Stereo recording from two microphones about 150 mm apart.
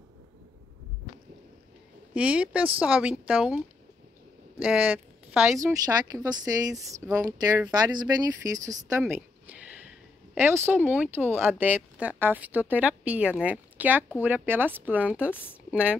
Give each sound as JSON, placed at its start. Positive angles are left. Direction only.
{"t": 2.1, "sound": "speech", "side_deg": -10}
{"t": 5.5, "sound": "a woman's voice", "side_deg": -20}
{"t": 9.1, "sound": "speech", "side_deg": -10}